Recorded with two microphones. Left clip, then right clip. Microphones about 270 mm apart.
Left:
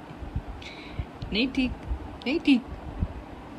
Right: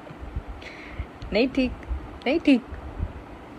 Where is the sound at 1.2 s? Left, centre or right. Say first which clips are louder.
Right 4 dB; centre.